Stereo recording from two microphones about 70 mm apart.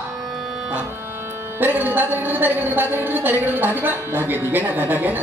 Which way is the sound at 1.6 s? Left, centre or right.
Right.